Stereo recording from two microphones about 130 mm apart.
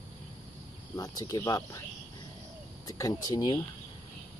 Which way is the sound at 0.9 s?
30° left (ahead or behind).